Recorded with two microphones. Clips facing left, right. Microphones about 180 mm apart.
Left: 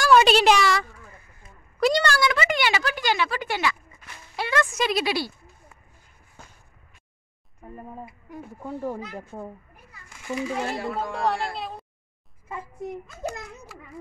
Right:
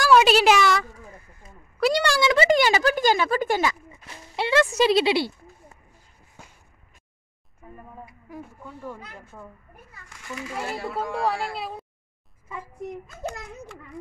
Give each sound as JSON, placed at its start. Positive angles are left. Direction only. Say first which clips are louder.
{"t": 0.0, "sound": "a sound", "louder": "even", "side_deg": -5}
{"t": 2.2, "sound": "speech", "louder": "right 5 dB", "side_deg": -30}
{"t": 4.1, "sound": "speech", "louder": "right 4 dB", "side_deg": -25}
{"t": 8.6, "sound": "speech", "louder": "left 11 dB", "side_deg": 35}
{"t": 10.5, "sound": "speech", "louder": "left 2 dB", "side_deg": -5}